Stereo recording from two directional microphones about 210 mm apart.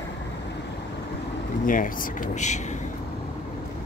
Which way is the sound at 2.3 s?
35° left (ahead or behind).